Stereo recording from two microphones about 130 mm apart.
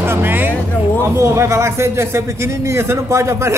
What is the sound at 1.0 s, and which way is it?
A man's voice, 20° right (ahead or behind).